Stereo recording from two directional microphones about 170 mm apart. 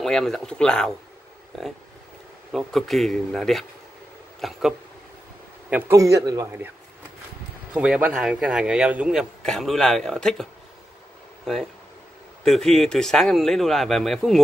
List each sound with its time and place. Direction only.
0.0 s a man's voice: 5° left (ahead or behind)
5.7 s a man's voice: 15° right (ahead or behind)
7.7 s a man's voice: 5° right (ahead or behind)
12.4 s a man's voice: centre (ahead or behind)